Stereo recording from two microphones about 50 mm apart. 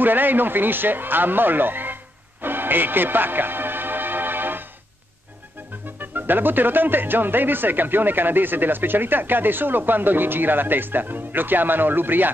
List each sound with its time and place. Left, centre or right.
0.0 s speech: right
2.4 s music: right
5.9 s speech: right